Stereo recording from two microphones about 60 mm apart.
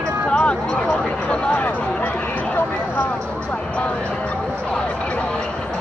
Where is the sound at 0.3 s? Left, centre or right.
Centre.